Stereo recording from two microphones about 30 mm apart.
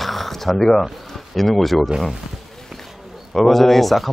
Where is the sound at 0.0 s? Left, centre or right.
Centre.